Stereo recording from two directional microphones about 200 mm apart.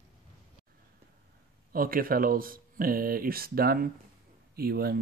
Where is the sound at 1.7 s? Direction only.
45° right (ahead or behind).